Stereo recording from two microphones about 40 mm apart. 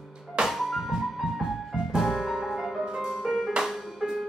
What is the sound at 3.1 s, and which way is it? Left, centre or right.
Music, centre.